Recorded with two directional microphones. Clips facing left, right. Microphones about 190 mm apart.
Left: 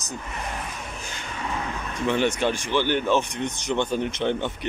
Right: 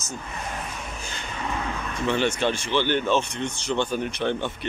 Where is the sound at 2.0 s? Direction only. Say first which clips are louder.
Left 1 dB; 15° left (ahead or behind).